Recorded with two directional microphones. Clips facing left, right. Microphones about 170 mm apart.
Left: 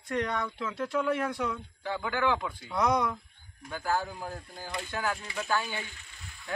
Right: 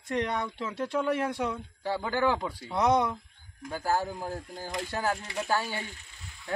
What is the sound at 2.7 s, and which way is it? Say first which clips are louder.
Speech: right 2 dB; 25° right (ahead or behind).